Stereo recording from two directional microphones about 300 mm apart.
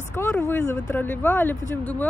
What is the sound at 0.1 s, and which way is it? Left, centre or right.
Speech, centre.